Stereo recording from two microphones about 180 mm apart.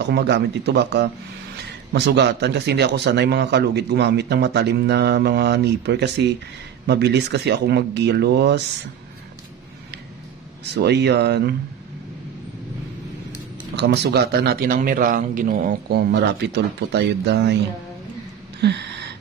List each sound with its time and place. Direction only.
0.0 s a man's voice: 65° right (ahead or behind)
10.6 s a man's voice: 70° right (ahead or behind)
13.7 s a man's voice: 70° right (ahead or behind)
18.6 s a sound: 70° right (ahead or behind)